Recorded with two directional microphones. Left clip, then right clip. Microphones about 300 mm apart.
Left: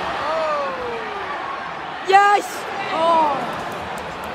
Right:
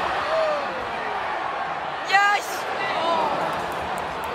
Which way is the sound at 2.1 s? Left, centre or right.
Centre.